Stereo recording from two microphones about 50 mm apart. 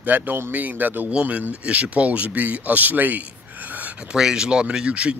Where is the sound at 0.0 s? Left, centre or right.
Right.